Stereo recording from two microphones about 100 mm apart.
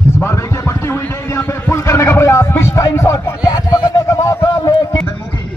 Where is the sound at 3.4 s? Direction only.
35° left (ahead or behind).